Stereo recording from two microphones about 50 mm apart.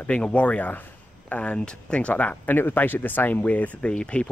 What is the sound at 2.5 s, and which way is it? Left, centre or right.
Speech, left.